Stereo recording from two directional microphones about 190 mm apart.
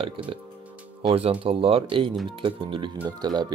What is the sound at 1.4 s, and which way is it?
Speech, 30° right (ahead or behind).